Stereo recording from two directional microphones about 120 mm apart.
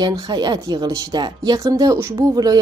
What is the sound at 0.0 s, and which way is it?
Speech, 35° right (ahead or behind).